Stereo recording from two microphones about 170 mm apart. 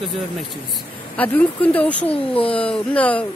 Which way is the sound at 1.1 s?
10° left (ahead or behind).